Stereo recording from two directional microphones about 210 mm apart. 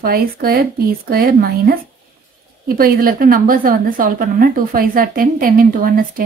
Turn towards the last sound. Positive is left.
turn(degrees=-40)  # may be behind; listen again after turning